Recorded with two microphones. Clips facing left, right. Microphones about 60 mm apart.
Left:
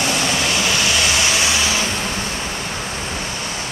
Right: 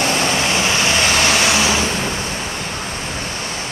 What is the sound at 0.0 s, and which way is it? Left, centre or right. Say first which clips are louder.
Vehicle: right 2 dB; right.